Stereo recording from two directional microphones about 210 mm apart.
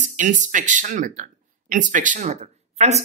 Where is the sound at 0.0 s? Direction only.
35° right (ahead or behind).